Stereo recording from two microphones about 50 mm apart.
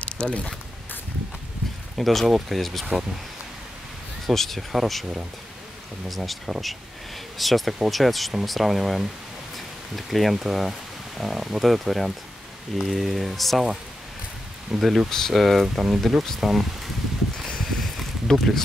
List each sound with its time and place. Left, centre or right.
0.0 s speech: left
2.0 s speech: centre
4.3 s speech: centre
6.0 s speech: centre
14.8 s speech: centre
17.5 s a sound: centre